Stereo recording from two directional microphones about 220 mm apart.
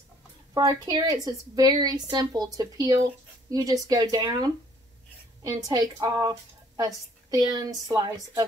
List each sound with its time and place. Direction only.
0.6 s a woman's voice: 15° right (ahead or behind)
5.7 s a woman's voice: 15° right (ahead or behind)